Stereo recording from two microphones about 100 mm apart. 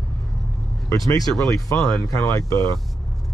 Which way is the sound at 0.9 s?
35° left (ahead or behind).